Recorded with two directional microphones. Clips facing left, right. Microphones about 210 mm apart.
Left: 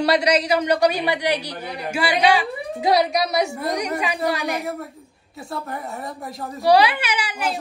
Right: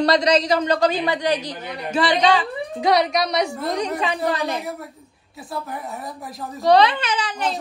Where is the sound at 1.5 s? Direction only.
30° left (ahead or behind).